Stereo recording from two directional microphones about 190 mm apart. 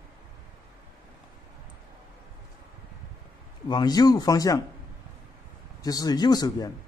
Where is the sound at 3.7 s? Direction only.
20° left (ahead or behind).